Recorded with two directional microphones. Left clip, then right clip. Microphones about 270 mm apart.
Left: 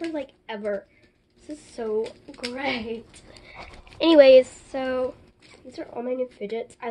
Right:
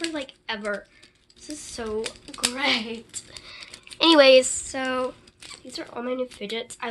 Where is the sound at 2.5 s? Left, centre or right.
Centre.